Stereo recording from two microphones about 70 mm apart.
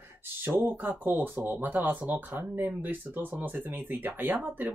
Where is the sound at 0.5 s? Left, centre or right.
Right.